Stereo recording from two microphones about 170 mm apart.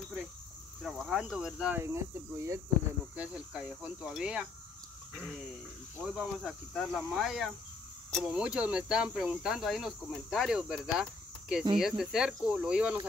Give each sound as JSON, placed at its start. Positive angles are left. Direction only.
{"t": 0.8, "sound": "speech", "side_deg": 0}
{"t": 1.8, "sound": "cricket", "side_deg": -15}
{"t": 3.2, "sound": "speech", "side_deg": -5}
{"t": 6.0, "sound": "speech", "side_deg": -5}